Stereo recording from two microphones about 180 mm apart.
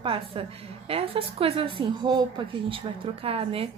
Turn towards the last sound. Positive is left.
turn(degrees=-30)  # may be behind; listen again after turning